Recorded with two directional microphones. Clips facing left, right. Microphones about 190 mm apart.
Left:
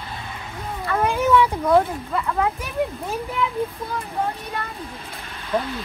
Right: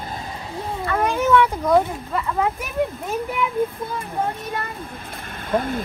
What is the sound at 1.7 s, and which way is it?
Speech, centre (ahead or behind).